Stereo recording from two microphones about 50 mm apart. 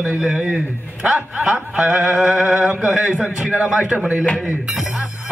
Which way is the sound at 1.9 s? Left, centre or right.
Right.